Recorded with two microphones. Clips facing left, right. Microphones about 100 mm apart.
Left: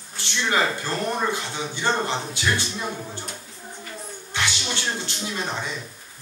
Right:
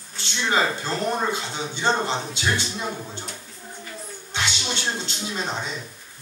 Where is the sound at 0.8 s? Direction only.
20° right (ahead or behind).